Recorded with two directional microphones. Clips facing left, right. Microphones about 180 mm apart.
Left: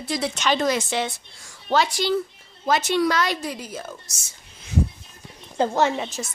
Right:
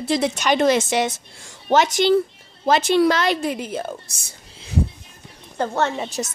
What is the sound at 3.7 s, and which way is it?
Speech, 60° right (ahead or behind).